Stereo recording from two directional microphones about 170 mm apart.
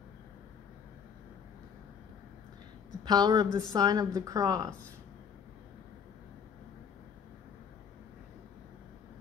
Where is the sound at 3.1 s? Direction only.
25° right (ahead or behind).